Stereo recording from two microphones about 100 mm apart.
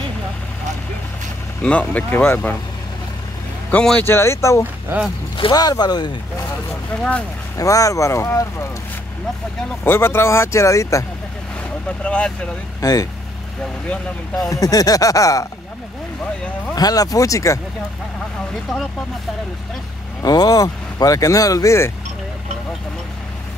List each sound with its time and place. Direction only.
1.6 s speech: 15° left (ahead or behind)
3.7 s speech: 10° left (ahead or behind)
4.0 s speech: 25° left (ahead or behind)
5.5 s speech: 40° left (ahead or behind)
7.0 s speech: 10° left (ahead or behind)
7.5 s speech: 35° left (ahead or behind)
9.8 s speech: 25° left (ahead or behind)
12.0 s speech: 10° left (ahead or behind)
12.8 s speech: 30° left (ahead or behind)
14.5 s speech: 35° left (ahead or behind)
16.7 s speech: 40° left (ahead or behind)
20.2 s speech: 35° left (ahead or behind)